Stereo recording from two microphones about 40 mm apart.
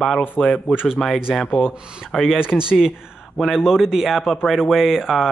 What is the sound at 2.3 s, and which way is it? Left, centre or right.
Speech, right.